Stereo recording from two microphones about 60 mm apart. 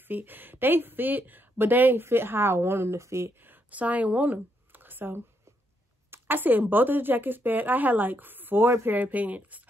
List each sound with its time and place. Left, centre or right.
0.1 s speech: right
3.4 s speech: right